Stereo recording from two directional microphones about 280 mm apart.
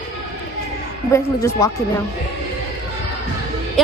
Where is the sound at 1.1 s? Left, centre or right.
Centre.